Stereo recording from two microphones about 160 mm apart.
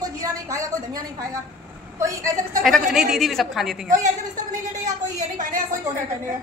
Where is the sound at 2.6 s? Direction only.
Centre (ahead or behind).